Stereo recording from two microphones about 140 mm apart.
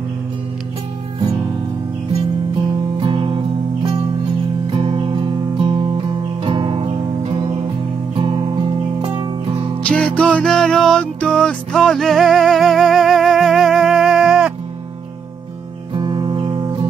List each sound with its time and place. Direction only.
3.0 s music: 40° right (ahead or behind)
4.6 s music: 40° right (ahead or behind)
9.8 s music: 10° left (ahead or behind)
15.9 s music: 35° right (ahead or behind)